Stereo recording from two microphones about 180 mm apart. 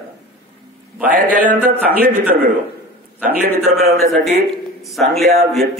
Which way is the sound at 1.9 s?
50° right (ahead or behind).